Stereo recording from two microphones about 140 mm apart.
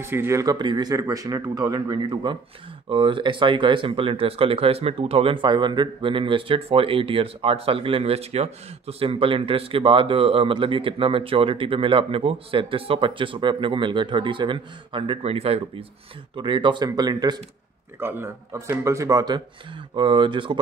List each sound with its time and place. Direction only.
0.0 s speech: 15° right (ahead or behind)
18.0 s speech: 15° right (ahead or behind); by 20.5 s 35° right (ahead or behind)